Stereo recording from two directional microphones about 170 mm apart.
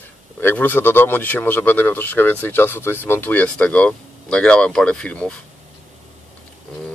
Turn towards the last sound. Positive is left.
turn(degrees=5)  # may be behind; listen again after turning